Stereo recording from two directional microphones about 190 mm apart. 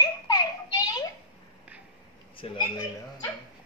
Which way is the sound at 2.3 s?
25° left (ahead or behind).